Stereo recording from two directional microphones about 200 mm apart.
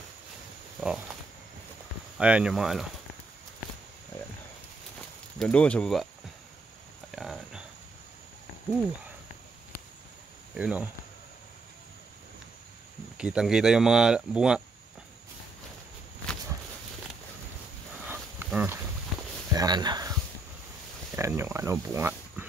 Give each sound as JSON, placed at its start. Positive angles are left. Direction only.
{"t": 0.7, "sound": "speech", "side_deg": 0}
{"t": 2.1, "sound": "speech", "side_deg": -5}
{"t": 5.4, "sound": "speech", "side_deg": 5}
{"t": 7.1, "sound": "a sound", "side_deg": 0}
{"t": 10.5, "sound": "speech", "side_deg": -5}
{"t": 13.2, "sound": "speech", "side_deg": -5}
{"t": 18.0, "sound": "livestock", "side_deg": -10}
{"t": 19.5, "sound": "a sound", "side_deg": -20}
{"t": 21.2, "sound": "speech", "side_deg": -10}